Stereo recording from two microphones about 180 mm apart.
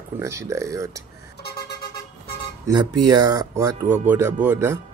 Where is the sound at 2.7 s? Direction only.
20° right (ahead or behind).